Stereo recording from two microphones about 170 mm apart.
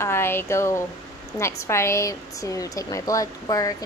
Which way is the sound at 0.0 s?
15° left (ahead or behind).